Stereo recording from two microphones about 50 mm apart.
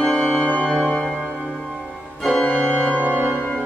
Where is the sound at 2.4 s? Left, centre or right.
Left.